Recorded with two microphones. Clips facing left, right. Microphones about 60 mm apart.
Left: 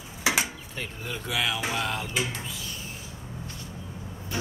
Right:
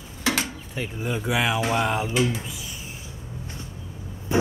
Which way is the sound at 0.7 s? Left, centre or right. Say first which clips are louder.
Right 7 dB; centre.